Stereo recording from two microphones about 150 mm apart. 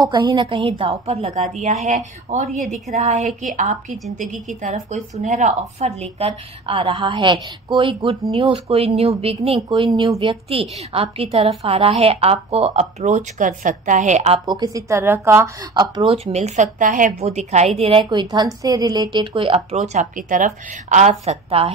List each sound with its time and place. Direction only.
0.0 s a woman's voice: 25° right (ahead or behind); by 9.6 s 40° right (ahead or behind)
9.6 s a woman's voice: 30° right (ahead or behind); by 14.4 s 45° right (ahead or behind)
14.4 s a woman's voice: 25° right (ahead or behind)